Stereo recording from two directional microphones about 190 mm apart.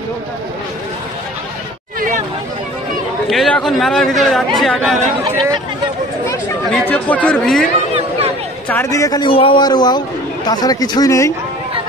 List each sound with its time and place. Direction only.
3.3 s speech: centre (ahead or behind)
6.9 s a man's voice: 10° left (ahead or behind)